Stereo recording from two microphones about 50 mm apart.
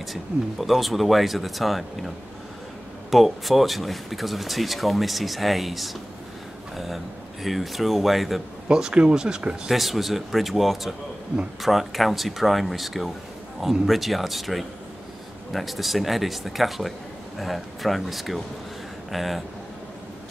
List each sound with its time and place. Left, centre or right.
0.0 s speech: centre
7.4 s speech: centre
8.6 s speech: centre
9.7 s speech: centre